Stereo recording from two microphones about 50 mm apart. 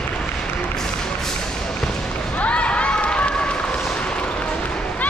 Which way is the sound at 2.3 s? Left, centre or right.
Left.